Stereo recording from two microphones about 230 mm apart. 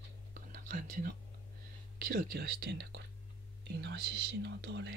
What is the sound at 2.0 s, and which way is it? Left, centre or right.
Speech, right.